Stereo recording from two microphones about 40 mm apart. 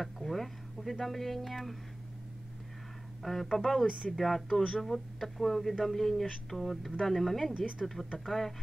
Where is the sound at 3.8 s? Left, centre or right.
Centre.